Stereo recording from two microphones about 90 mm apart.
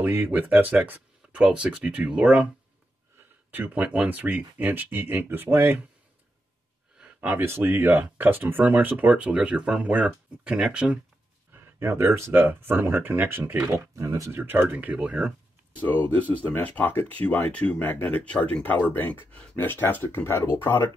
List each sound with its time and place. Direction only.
0.0 s speech: 20° right (ahead or behind)
3.5 s speech: 15° right (ahead or behind)
7.0 s speech: 15° right (ahead or behind)
11.5 s speech: 25° right (ahead or behind)
14.3 s speech: 25° right (ahead or behind)
15.8 s speech: 20° left (ahead or behind)